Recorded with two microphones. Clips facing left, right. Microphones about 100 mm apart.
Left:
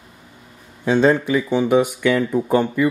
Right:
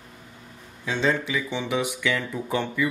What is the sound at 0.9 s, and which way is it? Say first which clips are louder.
Speech: left 9 dB; 45° left (ahead or behind).